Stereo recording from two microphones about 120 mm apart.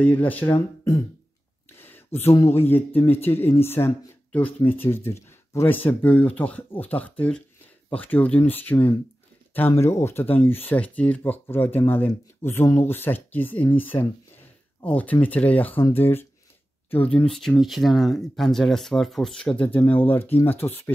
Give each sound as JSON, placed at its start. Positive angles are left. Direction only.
{"t": 0.0, "sound": "speech", "side_deg": 15}
{"t": 0.6, "sound": "speech", "side_deg": 25}
{"t": 17.1, "sound": "speech", "side_deg": 5}